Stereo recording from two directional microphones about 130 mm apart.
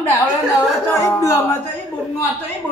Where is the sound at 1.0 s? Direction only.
20° left (ahead or behind).